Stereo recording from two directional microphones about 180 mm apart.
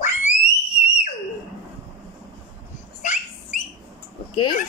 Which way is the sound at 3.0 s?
45° left (ahead or behind).